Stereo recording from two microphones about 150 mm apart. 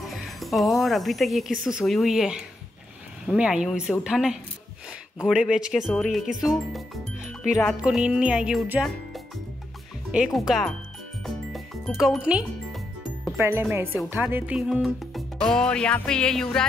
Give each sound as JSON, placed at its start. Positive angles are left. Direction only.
{"t": 0.0, "sound": "speech", "side_deg": 0}
{"t": 1.6, "sound": "music", "side_deg": 0}
{"t": 13.4, "sound": "speech", "side_deg": -15}
{"t": 14.1, "sound": "music", "side_deg": -15}